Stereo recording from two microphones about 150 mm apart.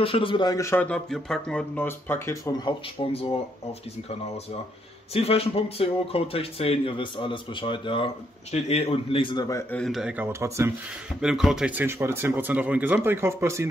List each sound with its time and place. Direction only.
0.0 s speech: 35° left (ahead or behind)
5.1 s speech: 40° left (ahead or behind); by 9.8 s 20° left (ahead or behind)
9.8 s speech: centre (ahead or behind)
11.1 s speech: 5° right (ahead or behind)